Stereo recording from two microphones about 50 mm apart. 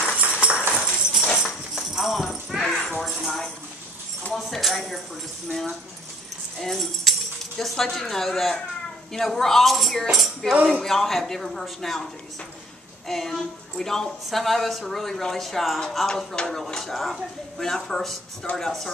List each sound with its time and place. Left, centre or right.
0.2 s a sound: right
1.3 s horse: centre
4.3 s a woman's voice: centre